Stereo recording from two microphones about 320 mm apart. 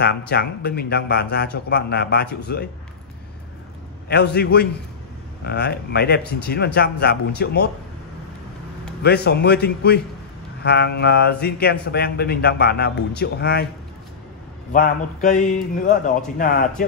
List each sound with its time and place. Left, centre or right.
0.0 s speech: left
4.1 s a man's voice: left
9.0 s a man's voice: left
14.7 s speech: left